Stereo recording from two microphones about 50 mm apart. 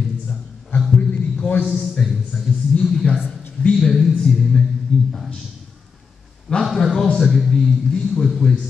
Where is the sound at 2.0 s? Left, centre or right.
Centre.